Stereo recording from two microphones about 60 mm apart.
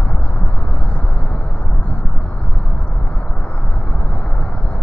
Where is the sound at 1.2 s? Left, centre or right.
Left.